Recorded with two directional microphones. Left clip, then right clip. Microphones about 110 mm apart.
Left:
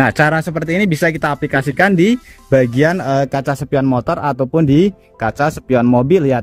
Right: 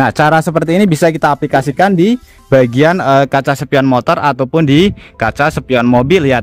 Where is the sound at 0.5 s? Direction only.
45° right (ahead or behind).